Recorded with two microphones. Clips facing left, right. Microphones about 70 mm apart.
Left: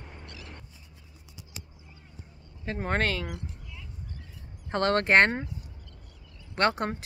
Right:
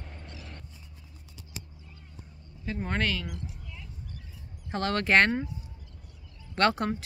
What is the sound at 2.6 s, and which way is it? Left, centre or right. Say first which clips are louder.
Speech: left 2 dB; left.